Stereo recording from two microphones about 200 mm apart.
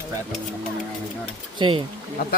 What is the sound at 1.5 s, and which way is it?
Speech, 25° right (ahead or behind).